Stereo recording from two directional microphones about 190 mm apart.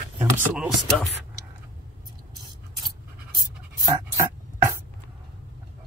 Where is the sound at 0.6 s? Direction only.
Centre (ahead or behind).